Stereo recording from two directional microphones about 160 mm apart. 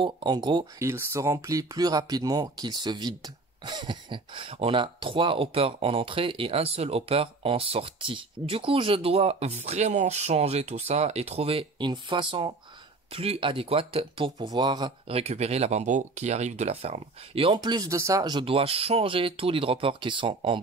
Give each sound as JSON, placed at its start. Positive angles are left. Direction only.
{"t": 0.0, "sound": "speech", "side_deg": -30}